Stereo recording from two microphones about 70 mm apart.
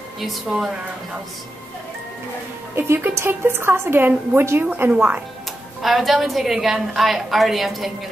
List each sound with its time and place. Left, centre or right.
0.5 s a woman's voice: centre
2.7 s a woman's voice: right
5.8 s a woman's voice: centre